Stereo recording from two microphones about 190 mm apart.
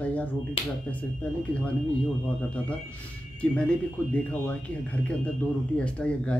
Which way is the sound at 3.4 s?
5° left (ahead or behind).